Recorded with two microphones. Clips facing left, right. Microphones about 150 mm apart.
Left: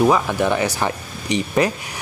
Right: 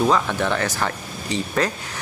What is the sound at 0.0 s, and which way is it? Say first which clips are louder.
Speech: left 3 dB; 15° left (ahead or behind).